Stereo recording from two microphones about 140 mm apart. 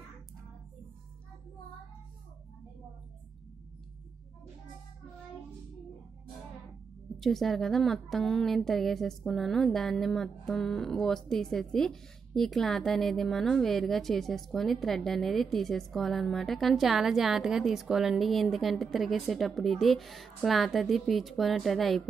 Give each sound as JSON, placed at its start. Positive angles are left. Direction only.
{"t": 7.2, "sound": "a woman's voice", "side_deg": 0}